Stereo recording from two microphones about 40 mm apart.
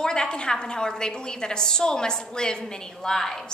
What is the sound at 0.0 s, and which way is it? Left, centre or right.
A woman's voice, centre.